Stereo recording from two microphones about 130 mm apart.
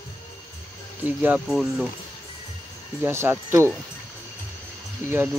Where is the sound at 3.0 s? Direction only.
15° right (ahead or behind).